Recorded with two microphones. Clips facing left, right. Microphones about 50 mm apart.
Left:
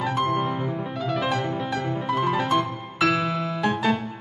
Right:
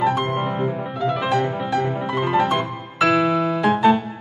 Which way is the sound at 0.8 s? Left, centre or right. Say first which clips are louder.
Right 4 dB; centre.